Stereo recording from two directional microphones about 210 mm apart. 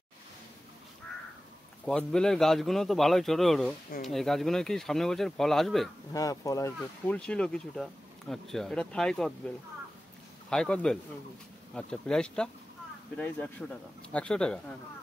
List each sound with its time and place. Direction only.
1.9 s speech: 5° left (ahead or behind)
6.1 s speech: 15° left (ahead or behind)
7.2 s speech: 5° left (ahead or behind)
10.5 s speech: 5° left (ahead or behind)